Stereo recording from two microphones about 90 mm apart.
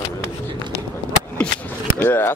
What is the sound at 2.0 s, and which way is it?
Speech, 25° left (ahead or behind).